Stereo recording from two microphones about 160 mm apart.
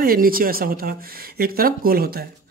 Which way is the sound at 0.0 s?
65° right (ahead or behind).